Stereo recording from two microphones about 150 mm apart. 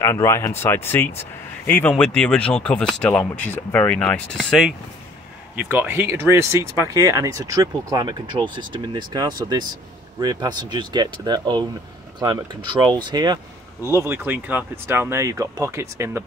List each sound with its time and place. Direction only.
0.0 s speech: 20° left (ahead or behind); by 4.7 s centre (ahead or behind)
5.6 s speech: 10° right (ahead or behind); by 13.4 s 30° right (ahead or behind)
14.0 s speech: 15° right (ahead or behind)